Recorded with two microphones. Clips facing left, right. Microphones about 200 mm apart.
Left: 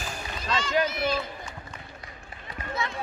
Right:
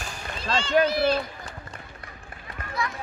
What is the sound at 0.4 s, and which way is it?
Run, 30° right (ahead or behind).